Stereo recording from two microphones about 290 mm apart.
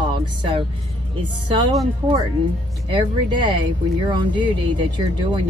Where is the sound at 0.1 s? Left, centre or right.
Centre.